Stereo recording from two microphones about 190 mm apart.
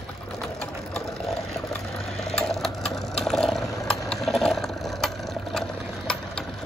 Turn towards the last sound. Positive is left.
turn(degrees=5)  # may be behind; listen again after turning